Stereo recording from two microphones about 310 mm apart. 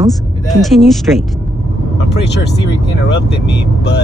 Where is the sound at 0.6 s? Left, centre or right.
Centre.